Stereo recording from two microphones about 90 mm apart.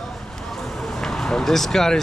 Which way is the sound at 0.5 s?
Centre (ahead or behind).